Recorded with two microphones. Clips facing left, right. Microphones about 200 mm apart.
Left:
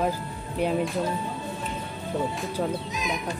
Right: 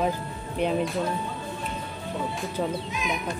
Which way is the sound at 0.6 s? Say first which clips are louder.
Even; 5° left (ahead or behind).